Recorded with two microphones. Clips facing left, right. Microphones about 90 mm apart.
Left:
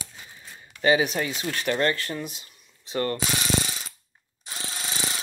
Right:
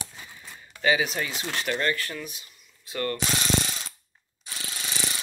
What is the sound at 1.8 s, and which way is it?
Speech, 30° left (ahead or behind).